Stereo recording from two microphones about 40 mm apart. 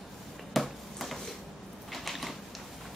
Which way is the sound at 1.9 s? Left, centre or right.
Centre.